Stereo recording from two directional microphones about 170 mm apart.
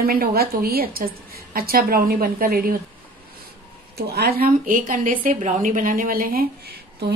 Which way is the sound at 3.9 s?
70° right (ahead or behind).